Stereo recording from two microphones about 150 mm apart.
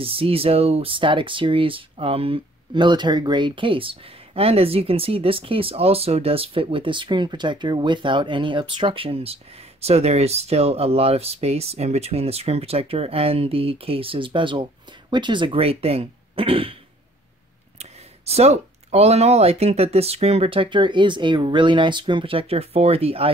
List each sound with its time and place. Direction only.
0.0 s speech: 40° right (ahead or behind)
17.7 s speech: 45° right (ahead or behind)